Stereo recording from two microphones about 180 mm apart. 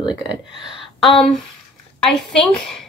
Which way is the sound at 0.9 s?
Centre (ahead or behind).